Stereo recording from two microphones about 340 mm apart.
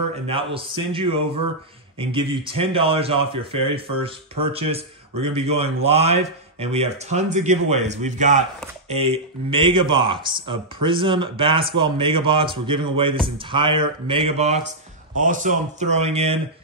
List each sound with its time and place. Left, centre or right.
0.3 s speech: centre